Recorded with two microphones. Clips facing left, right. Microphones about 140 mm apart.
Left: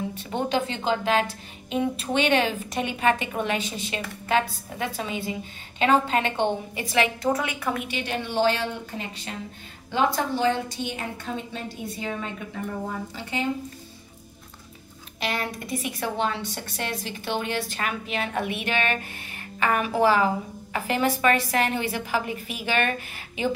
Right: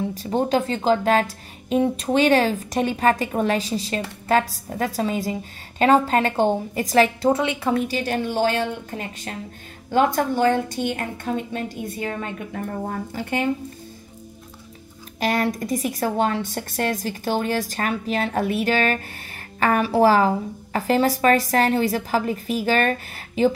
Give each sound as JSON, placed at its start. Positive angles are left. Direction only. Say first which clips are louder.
{"t": 0.1, "sound": "a woman's voice", "louder": "right 6 dB", "side_deg": -35}
{"t": 15.1, "sound": "a woman's voice", "louder": "right 7 dB", "side_deg": -40}